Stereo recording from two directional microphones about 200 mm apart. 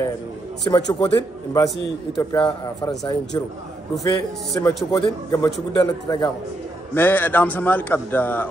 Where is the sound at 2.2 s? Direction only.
20° left (ahead or behind).